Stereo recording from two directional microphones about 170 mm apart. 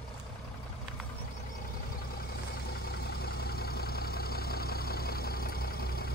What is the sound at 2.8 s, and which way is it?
Vehicle, 65° left (ahead or behind).